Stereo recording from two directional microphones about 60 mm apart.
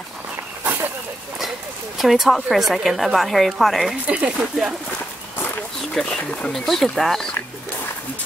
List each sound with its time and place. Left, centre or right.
0.7 s a sound: right
2.0 s speech: centre
4.1 s speech: centre
5.9 s speech: centre